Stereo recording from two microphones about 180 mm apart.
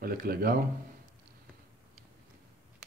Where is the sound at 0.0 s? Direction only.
55° right (ahead or behind).